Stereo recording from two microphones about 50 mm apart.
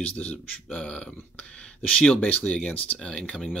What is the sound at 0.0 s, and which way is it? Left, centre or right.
Speech, left.